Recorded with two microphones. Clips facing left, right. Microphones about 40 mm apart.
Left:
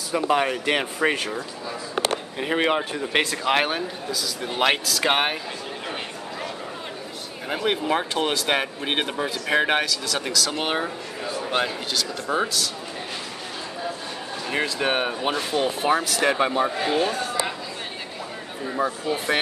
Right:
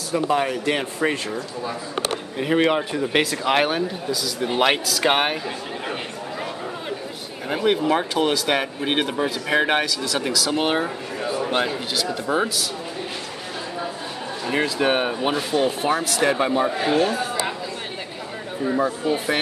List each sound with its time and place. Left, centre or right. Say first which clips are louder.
0.1 s speech: even; centre
2.3 s speech: right 5 dB; centre
7.4 s speech: right 4 dB; centre
14.4 s speech: right 3 dB; centre
18.6 s speech: right 4 dB; centre